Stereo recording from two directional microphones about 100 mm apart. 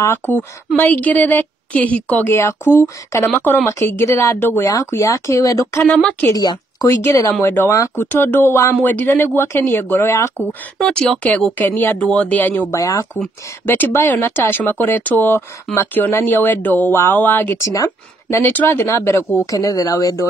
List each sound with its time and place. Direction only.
0.2 s speech: 25° left (ahead or behind)
4.6 s speech: 35° left (ahead or behind)
5.9 s speech: 10° left (ahead or behind)
6.2 s a woman's voice: 40° left (ahead or behind)
7.3 s speech: 20° left (ahead or behind)
10.8 s speech: 10° left (ahead or behind)
12.7 s speech: 35° left (ahead or behind)
13.7 s speech: 20° left (ahead or behind); by 20.2 s 35° left (ahead or behind)